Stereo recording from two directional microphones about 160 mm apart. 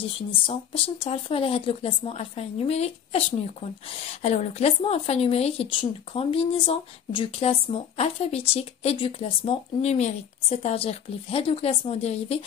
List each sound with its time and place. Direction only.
0.3 s a woman's voice: 35° left (ahead or behind)